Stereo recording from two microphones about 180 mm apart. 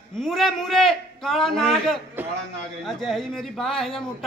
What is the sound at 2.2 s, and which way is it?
A man's voice, 10° right (ahead or behind).